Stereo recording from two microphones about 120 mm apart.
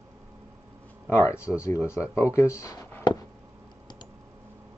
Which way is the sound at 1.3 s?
10° right (ahead or behind).